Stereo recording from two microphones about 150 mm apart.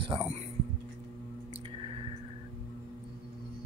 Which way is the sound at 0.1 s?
35° right (ahead or behind).